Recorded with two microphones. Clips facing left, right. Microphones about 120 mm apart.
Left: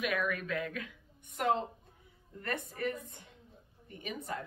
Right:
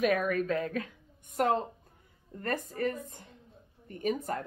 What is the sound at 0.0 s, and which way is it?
Speech, 40° right (ahead or behind).